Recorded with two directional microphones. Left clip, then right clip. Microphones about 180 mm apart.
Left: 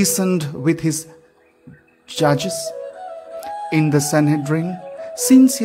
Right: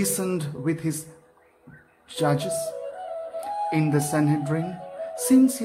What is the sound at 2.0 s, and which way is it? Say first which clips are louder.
Speech: left 7 dB; 35° left (ahead or behind).